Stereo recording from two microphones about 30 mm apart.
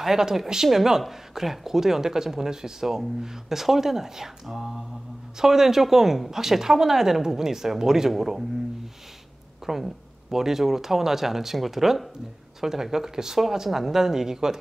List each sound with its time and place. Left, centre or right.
0.0 s speech: centre
9.7 s speech: centre